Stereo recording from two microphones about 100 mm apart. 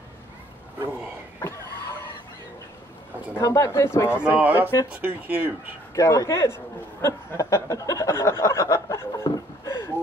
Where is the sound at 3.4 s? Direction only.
30° left (ahead or behind).